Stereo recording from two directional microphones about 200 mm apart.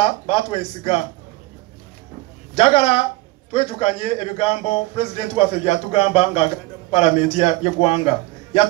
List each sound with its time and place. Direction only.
0.0 s a man's voice: 30° left (ahead or behind)
2.5 s a man's voice: 30° left (ahead or behind)